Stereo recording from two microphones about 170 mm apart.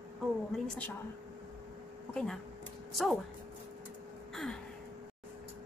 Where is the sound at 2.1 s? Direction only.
5° left (ahead or behind).